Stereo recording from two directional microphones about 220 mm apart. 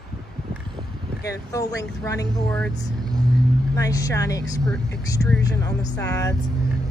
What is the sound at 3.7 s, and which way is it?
Speech, 15° left (ahead or behind).